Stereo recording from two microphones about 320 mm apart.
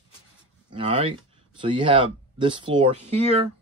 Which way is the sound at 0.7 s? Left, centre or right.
Centre.